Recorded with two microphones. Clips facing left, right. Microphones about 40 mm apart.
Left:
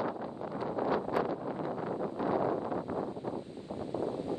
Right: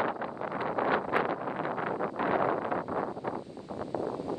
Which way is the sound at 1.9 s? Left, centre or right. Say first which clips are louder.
Right 2 dB; right.